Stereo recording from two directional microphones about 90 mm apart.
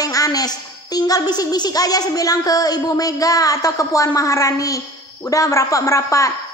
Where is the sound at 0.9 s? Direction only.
45° left (ahead or behind).